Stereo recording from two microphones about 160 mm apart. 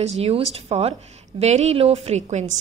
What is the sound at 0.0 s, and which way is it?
A woman's voice, 40° right (ahead or behind).